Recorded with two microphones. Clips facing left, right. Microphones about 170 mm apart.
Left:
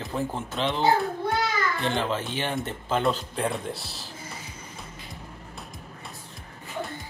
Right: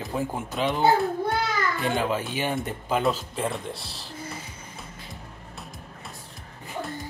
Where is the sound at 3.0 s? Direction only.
Centre (ahead or behind).